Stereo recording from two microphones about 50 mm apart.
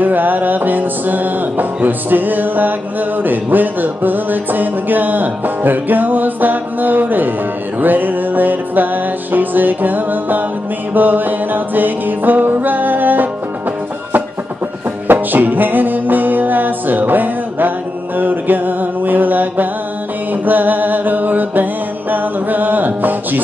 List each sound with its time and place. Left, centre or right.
0.0 s music: right
15.1 s music: right